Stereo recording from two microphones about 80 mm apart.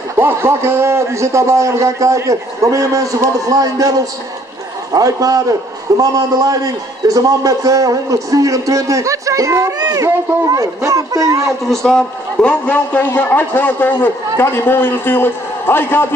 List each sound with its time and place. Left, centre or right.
0.2 s a man's voice: right
4.9 s a man's voice: right
11.7 s a man's voice: centre; by 16.1 s left